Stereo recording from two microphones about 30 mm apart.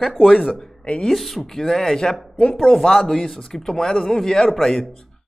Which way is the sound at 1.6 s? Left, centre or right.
Centre.